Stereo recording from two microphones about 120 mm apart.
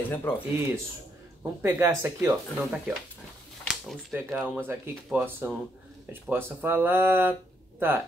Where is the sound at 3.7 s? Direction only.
Centre (ahead or behind).